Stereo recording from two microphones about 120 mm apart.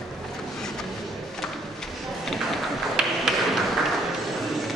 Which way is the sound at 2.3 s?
Centre (ahead or behind).